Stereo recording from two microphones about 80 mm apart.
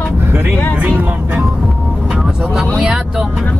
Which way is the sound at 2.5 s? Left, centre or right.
Centre.